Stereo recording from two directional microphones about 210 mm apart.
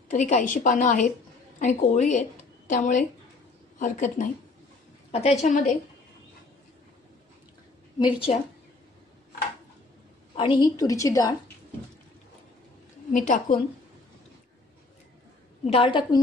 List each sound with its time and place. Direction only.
0.1 s a woman's voice: 35° left (ahead or behind)
8.0 s a woman's voice: 25° left (ahead or behind)
10.3 s a woman's voice: 25° left (ahead or behind)
13.1 s a woman's voice: 35° left (ahead or behind)
15.6 s a woman's voice: 25° left (ahead or behind)